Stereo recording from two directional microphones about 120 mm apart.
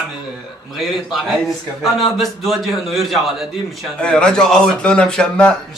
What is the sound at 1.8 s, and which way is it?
A man's voice, centre (ahead or behind).